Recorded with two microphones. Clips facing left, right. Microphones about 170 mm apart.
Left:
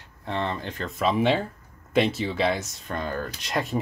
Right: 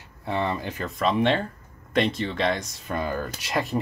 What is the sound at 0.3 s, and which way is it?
Speech, 10° right (ahead or behind).